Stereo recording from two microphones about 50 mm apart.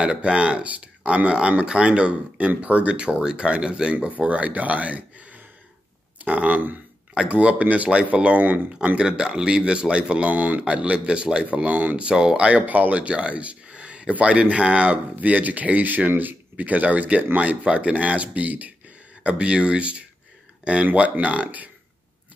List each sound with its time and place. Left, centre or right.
0.0 s speech: right
3.2 s speech: centre
3.9 s speech: right
10.6 s speech: centre
11.4 s speech: right
12.1 s speech: centre